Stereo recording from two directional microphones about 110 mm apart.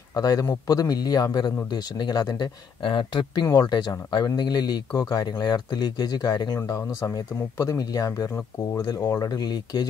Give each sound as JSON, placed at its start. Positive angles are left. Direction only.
{"t": 0.1, "sound": "speech", "side_deg": 35}